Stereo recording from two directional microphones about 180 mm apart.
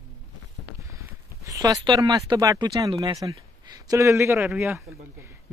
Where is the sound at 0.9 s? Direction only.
20° right (ahead or behind).